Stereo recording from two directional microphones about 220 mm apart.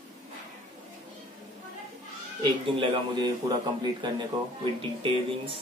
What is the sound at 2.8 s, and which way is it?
Speech, 20° right (ahead or behind).